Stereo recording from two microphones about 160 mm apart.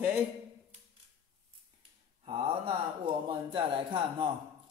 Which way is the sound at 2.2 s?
35° right (ahead or behind).